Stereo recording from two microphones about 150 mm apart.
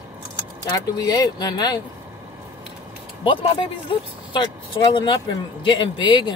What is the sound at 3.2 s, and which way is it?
Speech, 35° left (ahead or behind).